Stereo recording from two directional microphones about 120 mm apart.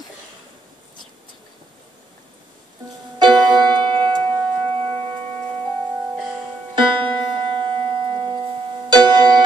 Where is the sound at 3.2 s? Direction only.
40° right (ahead or behind).